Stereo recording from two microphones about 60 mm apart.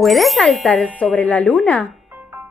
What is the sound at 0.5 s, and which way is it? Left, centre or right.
Speech, left.